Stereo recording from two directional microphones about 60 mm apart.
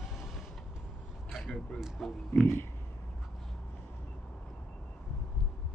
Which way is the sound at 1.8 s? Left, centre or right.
Centre.